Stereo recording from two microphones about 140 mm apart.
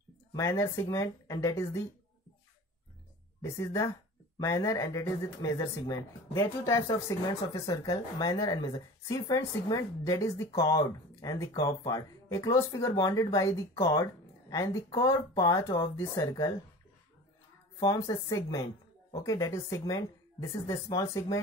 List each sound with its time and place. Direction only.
0.3 s speech: 20° left (ahead or behind)
3.4 s speech: 20° left (ahead or behind)
17.8 s speech: 20° left (ahead or behind)